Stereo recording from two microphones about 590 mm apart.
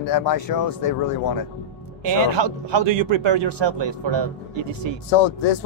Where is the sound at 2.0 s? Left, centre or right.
Right.